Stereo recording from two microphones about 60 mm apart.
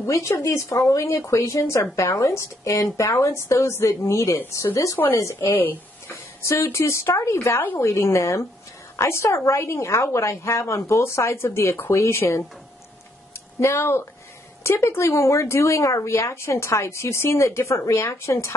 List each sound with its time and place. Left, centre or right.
0.0 s a woman's voice: left
0.7 s a woman's voice: left
5.5 s speech: left
6.4 s a woman's voice: left
11.7 s speech: left
12.0 s a woman's voice: left
13.6 s a woman's voice: left